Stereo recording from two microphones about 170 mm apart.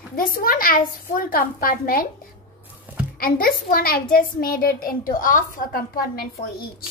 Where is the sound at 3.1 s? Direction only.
60° left (ahead or behind).